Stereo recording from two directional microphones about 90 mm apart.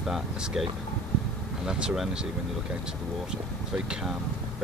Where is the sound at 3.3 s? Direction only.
10° right (ahead or behind).